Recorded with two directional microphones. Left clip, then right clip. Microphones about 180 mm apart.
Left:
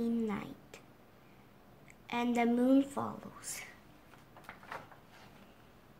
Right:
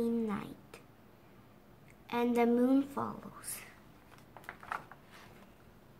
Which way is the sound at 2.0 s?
25° left (ahead or behind).